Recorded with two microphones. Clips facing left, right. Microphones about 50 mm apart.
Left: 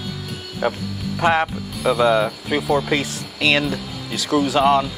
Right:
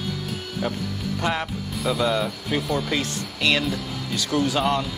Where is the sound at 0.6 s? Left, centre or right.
Left.